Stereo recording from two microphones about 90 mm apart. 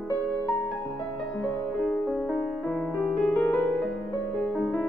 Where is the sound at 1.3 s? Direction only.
15° left (ahead or behind).